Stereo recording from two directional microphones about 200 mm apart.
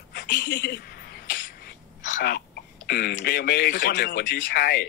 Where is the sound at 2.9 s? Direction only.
50° left (ahead or behind).